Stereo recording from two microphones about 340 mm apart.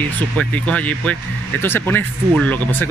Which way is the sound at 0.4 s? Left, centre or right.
Centre.